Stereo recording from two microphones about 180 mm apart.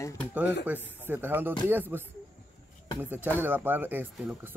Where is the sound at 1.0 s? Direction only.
10° right (ahead or behind).